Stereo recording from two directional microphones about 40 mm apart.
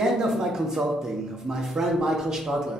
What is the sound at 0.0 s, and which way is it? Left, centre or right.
A man's voice, centre.